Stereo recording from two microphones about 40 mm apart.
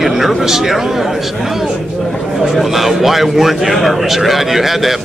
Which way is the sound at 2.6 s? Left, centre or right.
Centre.